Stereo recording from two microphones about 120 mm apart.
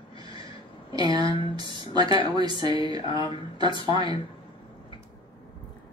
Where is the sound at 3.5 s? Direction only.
40° right (ahead or behind).